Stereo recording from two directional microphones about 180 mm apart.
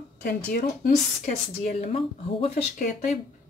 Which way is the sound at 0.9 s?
40° left (ahead or behind).